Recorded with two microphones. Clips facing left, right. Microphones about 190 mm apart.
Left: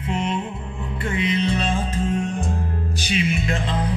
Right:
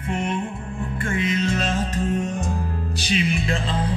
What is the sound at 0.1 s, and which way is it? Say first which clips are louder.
Music: even; 50° right (ahead or behind).